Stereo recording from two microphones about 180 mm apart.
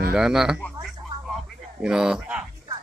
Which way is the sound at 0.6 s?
Centre (ahead or behind).